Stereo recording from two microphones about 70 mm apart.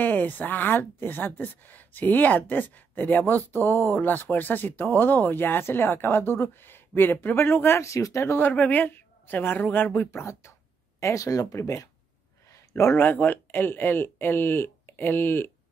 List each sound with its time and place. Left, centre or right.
0.0 s speech: left
8.4 s speech: left
10.1 s speech: left
12.9 s speech: left